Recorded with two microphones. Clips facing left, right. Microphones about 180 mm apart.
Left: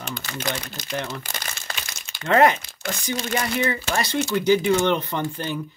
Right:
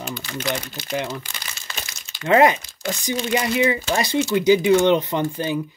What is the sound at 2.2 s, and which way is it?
Speech, 10° right (ahead or behind).